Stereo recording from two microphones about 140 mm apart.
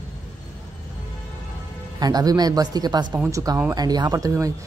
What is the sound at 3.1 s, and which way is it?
Speech, 20° right (ahead or behind).